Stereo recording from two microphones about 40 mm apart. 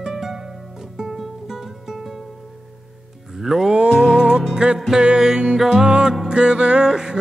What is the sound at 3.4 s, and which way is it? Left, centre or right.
Music, centre.